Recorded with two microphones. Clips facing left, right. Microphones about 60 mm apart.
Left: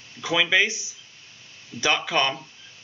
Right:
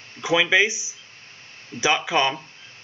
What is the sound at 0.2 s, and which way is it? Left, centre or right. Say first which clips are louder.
Speech: right 3 dB; centre.